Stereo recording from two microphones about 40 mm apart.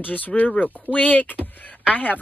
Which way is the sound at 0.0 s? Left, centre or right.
Left.